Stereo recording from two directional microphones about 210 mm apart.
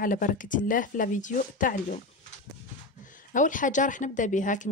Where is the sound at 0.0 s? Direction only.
40° left (ahead or behind).